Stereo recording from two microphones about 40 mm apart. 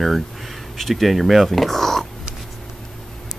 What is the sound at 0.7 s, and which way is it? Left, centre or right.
Speech, centre.